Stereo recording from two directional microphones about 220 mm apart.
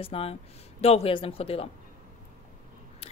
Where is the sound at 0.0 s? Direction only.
25° left (ahead or behind).